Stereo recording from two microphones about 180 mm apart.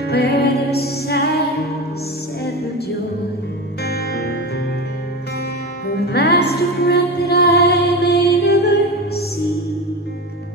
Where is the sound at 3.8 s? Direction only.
65° left (ahead or behind).